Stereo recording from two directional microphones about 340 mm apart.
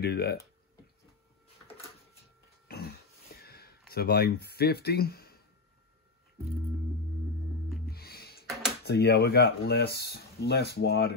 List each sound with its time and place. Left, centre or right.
0.0 s speech: left
2.7 s throat clearing: left
3.4 s speech: left
7.8 s music: left
8.8 s speech: left